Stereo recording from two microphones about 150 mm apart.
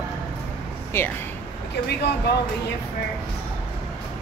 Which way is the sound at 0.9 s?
15° left (ahead or behind).